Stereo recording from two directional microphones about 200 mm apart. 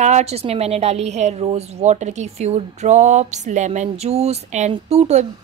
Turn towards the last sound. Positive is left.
turn(degrees=-35)  # may be behind; listen again after turning